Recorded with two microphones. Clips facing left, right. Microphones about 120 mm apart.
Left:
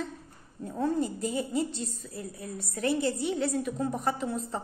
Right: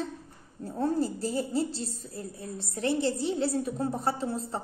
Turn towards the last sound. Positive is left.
turn(degrees=-30)  # may be behind; listen again after turning